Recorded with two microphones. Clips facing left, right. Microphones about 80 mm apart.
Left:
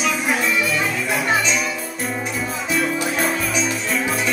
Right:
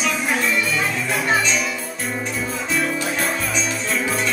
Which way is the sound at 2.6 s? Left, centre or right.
Centre.